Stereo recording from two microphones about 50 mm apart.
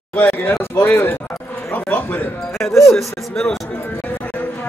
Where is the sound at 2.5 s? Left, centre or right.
Centre.